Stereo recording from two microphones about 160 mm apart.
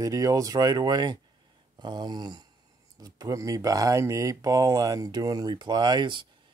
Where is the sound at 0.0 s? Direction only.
20° right (ahead or behind).